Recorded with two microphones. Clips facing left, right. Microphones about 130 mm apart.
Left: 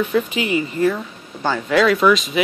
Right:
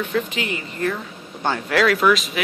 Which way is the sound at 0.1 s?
10° left (ahead or behind).